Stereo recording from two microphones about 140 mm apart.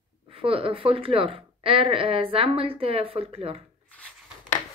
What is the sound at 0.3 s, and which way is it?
A woman's voice, 40° right (ahead or behind).